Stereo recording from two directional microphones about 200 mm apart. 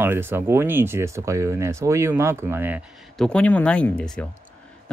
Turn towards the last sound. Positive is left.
turn(degrees=5)  # may be behind; listen again after turning